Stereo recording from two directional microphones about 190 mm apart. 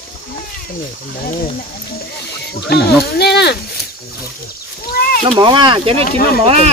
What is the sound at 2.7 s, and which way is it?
Speech, 60° left (ahead or behind).